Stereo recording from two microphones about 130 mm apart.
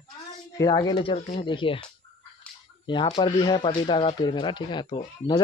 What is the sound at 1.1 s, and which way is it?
Speech, 50° left (ahead or behind).